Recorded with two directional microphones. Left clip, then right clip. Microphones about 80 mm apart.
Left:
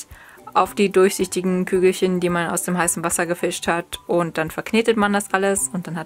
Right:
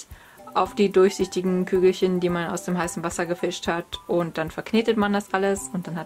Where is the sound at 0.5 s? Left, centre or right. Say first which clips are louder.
Left 4 dB; left.